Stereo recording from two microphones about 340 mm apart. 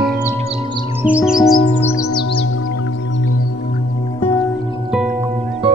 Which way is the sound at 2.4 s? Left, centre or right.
Left.